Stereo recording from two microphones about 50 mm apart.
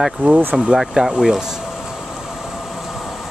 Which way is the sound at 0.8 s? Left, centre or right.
Centre.